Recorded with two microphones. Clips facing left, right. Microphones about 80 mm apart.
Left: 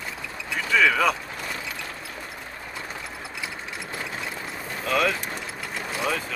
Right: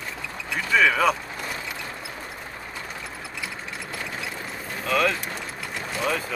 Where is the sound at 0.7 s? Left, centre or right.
Centre.